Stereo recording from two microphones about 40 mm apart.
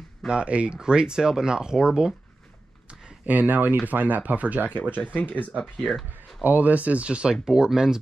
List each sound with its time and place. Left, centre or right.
0.3 s speech: right
3.3 s speech: right
5.0 s speech: left
5.8 s speech: centre
6.4 s speech: right
7.1 s speech: right
7.4 s speech: centre